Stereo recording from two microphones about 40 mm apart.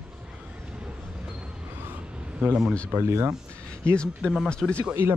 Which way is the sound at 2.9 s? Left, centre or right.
Right.